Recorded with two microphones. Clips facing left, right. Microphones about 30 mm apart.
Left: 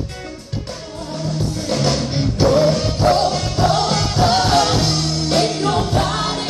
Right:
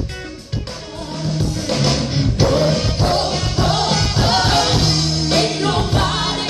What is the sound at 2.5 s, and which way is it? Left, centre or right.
Music, right.